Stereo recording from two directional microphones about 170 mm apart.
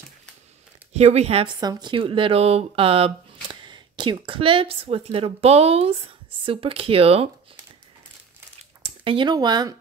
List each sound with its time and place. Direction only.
0.9 s speech: 40° right (ahead or behind)
1.6 s speech: 25° right (ahead or behind)
8.8 s speech: 30° right (ahead or behind)